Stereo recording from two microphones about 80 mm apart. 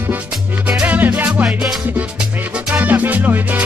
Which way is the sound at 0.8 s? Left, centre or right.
Right.